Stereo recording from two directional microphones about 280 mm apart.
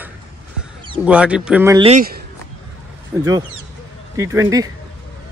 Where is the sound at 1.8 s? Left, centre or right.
Right.